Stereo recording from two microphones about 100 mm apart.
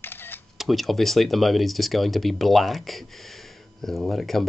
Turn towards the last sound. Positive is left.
turn(degrees=0)  # may be behind; listen again after turning